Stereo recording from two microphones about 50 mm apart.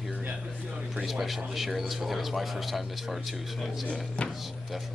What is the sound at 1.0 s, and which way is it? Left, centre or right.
Speech, centre.